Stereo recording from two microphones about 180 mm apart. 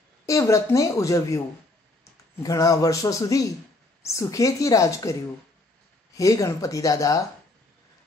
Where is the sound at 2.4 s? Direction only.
20° left (ahead or behind).